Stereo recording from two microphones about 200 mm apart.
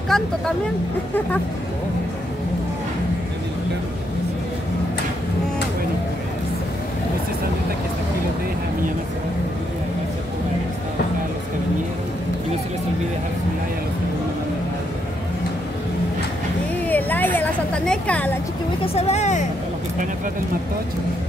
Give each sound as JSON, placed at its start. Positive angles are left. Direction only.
{"t": 0.1, "sound": "speech", "side_deg": 0}
{"t": 16.8, "sound": "a sound", "side_deg": 10}
{"t": 18.9, "sound": "speech", "side_deg": 35}